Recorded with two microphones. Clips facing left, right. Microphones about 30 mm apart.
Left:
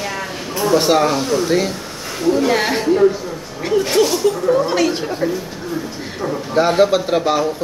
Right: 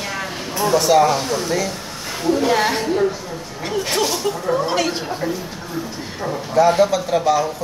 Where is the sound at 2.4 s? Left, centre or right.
Centre.